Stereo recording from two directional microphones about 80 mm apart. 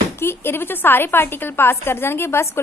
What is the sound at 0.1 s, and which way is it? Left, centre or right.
A woman's voice, left.